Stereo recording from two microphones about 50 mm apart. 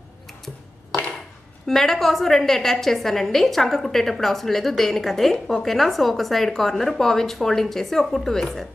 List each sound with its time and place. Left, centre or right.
1.7 s a woman's voice: centre